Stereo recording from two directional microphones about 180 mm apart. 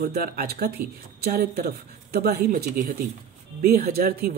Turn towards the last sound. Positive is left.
turn(degrees=-60)  # may be behind; listen again after turning